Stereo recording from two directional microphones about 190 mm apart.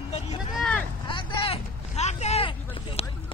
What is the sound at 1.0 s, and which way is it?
Vehicle, 25° left (ahead or behind).